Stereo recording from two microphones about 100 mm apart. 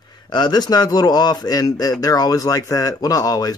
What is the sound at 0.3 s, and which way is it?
Speech, 45° left (ahead or behind).